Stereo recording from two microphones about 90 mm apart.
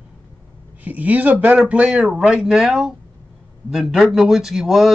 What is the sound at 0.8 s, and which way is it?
Speech, 20° right (ahead or behind).